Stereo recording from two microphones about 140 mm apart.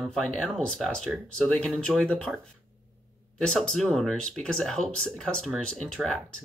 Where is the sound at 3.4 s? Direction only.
5° left (ahead or behind).